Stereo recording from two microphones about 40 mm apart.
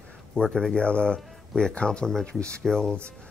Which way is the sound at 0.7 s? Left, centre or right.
Left.